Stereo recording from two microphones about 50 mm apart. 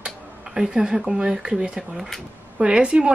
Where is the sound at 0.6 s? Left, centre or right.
Centre.